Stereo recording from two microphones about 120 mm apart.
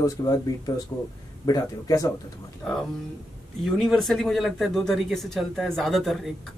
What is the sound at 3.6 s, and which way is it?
Speech, centre (ahead or behind).